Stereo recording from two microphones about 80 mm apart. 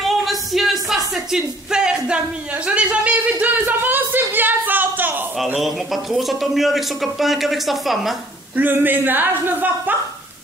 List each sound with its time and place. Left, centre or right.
0.0 s a sound: centre; by 5.2 s right
5.6 s speech: centre
8.5 s speech: right